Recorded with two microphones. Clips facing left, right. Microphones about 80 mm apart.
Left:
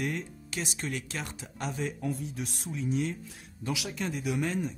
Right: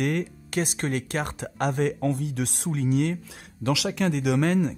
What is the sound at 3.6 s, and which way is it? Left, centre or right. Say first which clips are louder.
Speech: right 9 dB; right.